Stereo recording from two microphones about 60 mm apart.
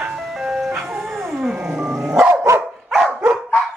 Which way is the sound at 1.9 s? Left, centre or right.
Centre.